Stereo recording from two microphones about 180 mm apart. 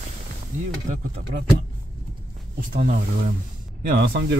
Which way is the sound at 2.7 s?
50° right (ahead or behind).